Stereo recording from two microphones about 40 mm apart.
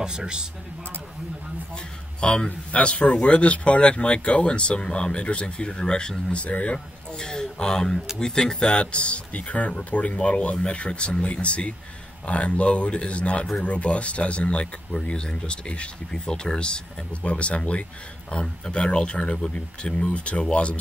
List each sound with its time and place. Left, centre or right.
0.0 s speech: centre
2.1 s speech: left
6.3 s speech: left